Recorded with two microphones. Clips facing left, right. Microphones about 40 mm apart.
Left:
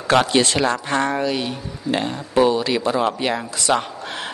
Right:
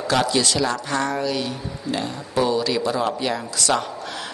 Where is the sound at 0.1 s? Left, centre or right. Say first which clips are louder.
Left 4 dB; left.